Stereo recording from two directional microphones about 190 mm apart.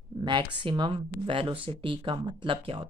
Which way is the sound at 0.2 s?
25° right (ahead or behind).